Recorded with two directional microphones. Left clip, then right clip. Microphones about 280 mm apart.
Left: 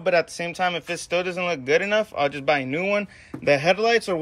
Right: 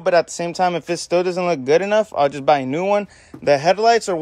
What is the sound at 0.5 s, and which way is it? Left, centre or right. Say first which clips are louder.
Speech: right 5 dB; centre.